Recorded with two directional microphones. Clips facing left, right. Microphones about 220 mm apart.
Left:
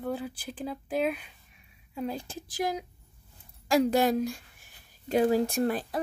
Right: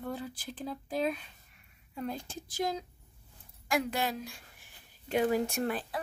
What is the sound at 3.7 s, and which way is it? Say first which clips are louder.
A woman's voice: left 8 dB; 40° left (ahead or behind).